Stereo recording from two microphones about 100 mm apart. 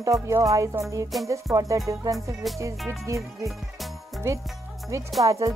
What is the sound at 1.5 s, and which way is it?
Speech, 35° right (ahead or behind).